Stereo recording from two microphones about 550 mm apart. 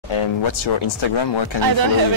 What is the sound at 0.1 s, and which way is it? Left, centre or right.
Speech, left.